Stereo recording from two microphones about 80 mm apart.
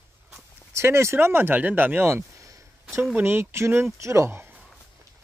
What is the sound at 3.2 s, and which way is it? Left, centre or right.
Speech, right.